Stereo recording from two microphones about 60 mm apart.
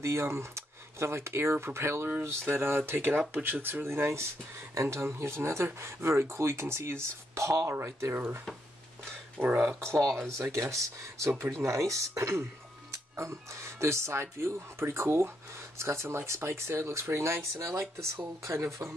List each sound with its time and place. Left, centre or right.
0.0 s speech: right
8.1 s speech: right
9.4 s speech: right
9.8 s speech: right